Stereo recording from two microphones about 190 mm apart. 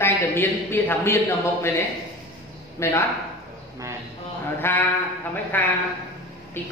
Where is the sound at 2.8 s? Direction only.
15° left (ahead or behind).